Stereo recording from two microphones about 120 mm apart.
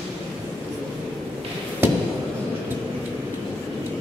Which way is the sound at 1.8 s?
20° right (ahead or behind).